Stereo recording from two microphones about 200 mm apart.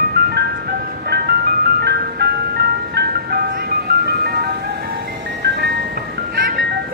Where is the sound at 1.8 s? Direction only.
55° right (ahead or behind).